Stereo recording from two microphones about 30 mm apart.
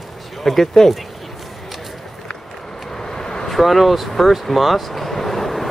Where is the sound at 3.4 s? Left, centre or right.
Centre.